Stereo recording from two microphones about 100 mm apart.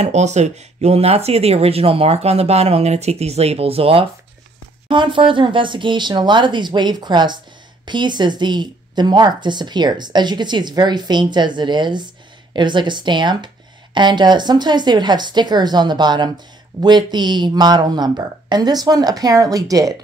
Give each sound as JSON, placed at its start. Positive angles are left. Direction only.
{"t": 0.0, "sound": "speech", "side_deg": -90}
{"t": 4.8, "sound": "a woman's voice", "side_deg": -55}